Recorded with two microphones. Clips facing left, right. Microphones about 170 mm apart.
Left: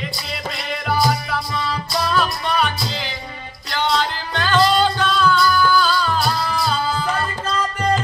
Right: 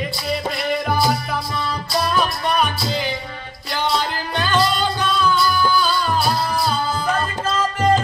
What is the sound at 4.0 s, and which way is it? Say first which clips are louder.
Music: even; 15° right (ahead or behind).